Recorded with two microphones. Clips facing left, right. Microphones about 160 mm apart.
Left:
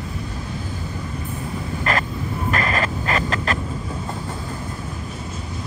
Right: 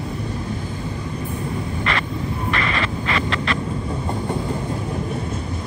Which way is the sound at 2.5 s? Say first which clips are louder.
Left 2 dB; 45° left (ahead or behind).